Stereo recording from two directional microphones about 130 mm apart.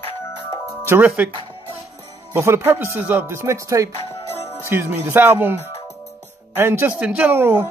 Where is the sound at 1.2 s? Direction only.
10° right (ahead or behind).